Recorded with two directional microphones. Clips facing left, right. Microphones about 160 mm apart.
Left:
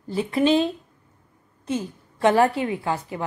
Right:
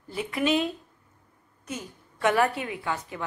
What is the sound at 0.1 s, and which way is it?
A woman's voice, 30° left (ahead or behind).